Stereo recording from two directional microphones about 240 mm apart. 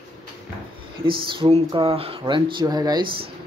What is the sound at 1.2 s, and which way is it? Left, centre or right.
Speech, right.